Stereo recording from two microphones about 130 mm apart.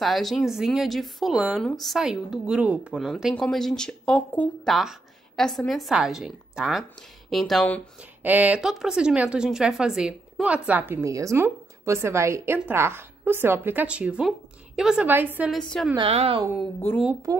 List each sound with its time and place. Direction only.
0.0 s speech: centre (ahead or behind)
4.6 s a woman's voice: centre (ahead or behind)
8.2 s a woman's voice: 15° right (ahead or behind)
16.0 s a woman's voice: 50° right (ahead or behind)
17.3 s a woman's voice: 25° right (ahead or behind)